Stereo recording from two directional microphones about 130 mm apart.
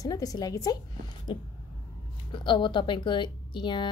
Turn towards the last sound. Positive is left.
turn(degrees=35)  # may be behind; listen again after turning